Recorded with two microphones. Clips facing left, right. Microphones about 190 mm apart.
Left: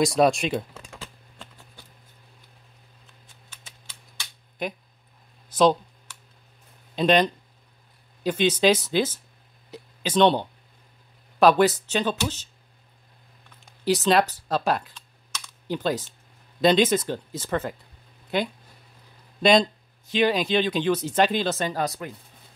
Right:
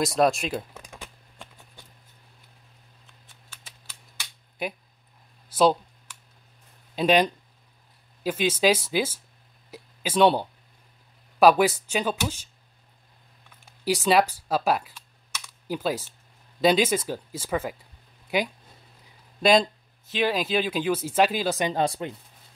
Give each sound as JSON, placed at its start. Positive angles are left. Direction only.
{"t": 0.0, "sound": "speech", "side_deg": 0}
{"t": 0.7, "sound": "typing", "side_deg": -15}
{"t": 4.6, "sound": "speech", "side_deg": -10}
{"t": 7.0, "sound": "speech", "side_deg": -10}
{"t": 13.7, "sound": "computer keyboard", "side_deg": -10}
{"t": 16.6, "sound": "speech", "side_deg": -10}
{"t": 21.8, "sound": "speech", "side_deg": -30}